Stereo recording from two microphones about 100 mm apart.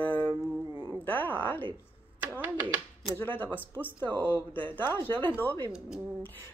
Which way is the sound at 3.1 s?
20° left (ahead or behind).